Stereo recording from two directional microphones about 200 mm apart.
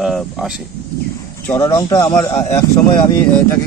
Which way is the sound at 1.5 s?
15° left (ahead or behind).